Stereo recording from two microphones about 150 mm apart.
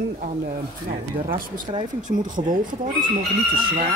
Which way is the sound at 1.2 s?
75° right (ahead or behind).